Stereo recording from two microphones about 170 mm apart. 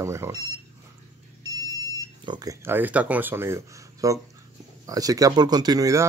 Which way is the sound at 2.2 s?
25° right (ahead or behind).